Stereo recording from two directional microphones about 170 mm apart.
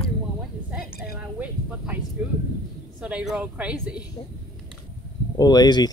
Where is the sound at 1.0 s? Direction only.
5° right (ahead or behind).